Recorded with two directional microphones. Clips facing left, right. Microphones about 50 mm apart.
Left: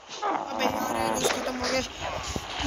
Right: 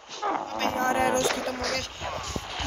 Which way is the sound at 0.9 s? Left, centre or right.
Right.